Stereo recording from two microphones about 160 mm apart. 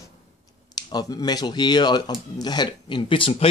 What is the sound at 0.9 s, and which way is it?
Speech, 25° left (ahead or behind).